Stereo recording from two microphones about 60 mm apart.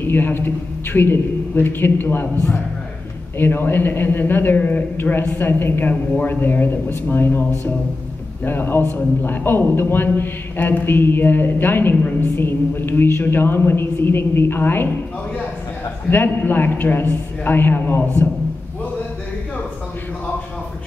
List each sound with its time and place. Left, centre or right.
0.0 s a man's voice: left
3.3 s a man's voice: left
16.1 s a man's voice: left